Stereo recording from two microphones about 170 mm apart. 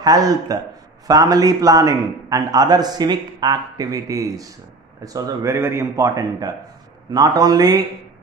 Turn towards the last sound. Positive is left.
turn(degrees=-20)  # may be behind; listen again after turning